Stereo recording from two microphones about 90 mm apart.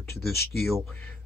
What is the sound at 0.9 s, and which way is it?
Speech, 15° left (ahead or behind).